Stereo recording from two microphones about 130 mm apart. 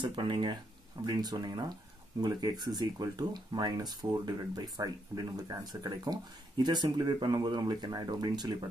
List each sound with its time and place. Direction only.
0.0 s speech: 40° right (ahead or behind)